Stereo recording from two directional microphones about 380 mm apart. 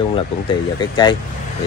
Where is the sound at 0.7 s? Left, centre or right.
Centre.